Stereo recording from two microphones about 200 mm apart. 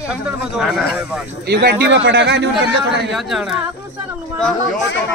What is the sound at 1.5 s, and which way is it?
A man's voice, 55° right (ahead or behind).